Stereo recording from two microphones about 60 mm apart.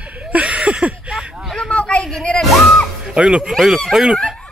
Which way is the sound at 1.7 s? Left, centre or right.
Centre.